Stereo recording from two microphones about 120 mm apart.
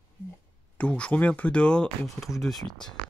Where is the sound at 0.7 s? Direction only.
10° left (ahead or behind).